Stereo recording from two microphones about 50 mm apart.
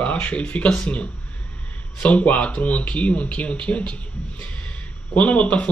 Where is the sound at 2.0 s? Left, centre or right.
Left.